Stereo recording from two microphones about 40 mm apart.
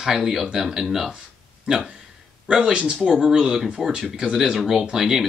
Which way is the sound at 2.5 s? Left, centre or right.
Centre.